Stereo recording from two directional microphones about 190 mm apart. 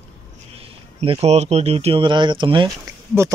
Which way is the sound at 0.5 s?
30° right (ahead or behind).